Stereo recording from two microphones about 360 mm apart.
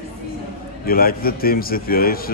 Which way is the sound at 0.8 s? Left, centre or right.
Left.